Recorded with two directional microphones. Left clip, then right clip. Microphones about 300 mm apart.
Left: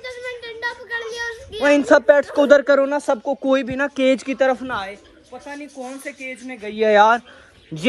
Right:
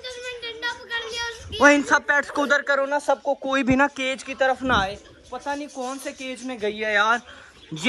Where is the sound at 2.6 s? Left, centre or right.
Left.